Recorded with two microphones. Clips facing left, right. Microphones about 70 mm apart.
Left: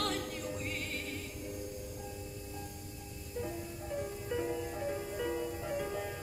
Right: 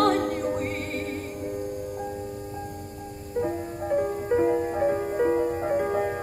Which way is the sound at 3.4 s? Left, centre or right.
Right.